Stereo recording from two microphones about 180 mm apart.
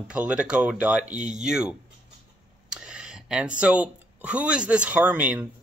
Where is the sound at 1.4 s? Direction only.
5° right (ahead or behind).